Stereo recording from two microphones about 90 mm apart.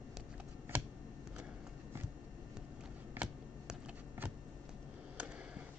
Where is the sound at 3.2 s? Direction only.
20° right (ahead or behind).